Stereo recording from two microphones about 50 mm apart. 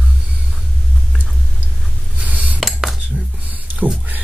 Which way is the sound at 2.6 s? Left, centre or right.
Centre.